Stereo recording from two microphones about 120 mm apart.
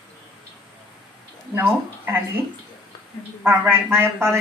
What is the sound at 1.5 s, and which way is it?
Speech, 20° right (ahead or behind).